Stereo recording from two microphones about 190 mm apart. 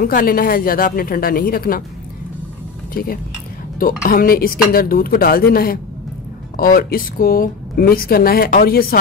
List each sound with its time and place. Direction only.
0.0 s speech: 50° left (ahead or behind)
2.9 s speech: 50° left (ahead or behind)